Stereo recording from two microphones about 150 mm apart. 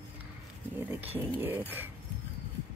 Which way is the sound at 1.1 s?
15° right (ahead or behind).